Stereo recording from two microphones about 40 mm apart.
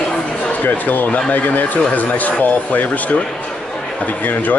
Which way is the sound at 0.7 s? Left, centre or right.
Left.